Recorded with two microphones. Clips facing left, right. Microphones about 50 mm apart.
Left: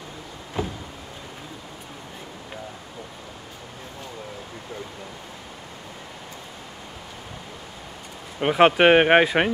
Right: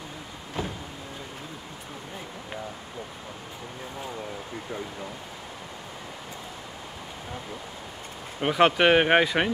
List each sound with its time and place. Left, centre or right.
0.6 s vehicle: centre
8.4 s speech: centre